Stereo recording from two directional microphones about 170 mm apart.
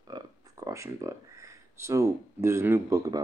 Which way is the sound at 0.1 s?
20° right (ahead or behind).